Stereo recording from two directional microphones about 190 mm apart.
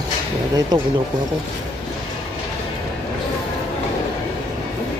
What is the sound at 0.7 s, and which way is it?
Speech, 20° right (ahead or behind).